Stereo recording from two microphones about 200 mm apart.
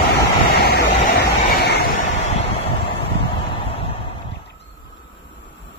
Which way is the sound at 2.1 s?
30° left (ahead or behind).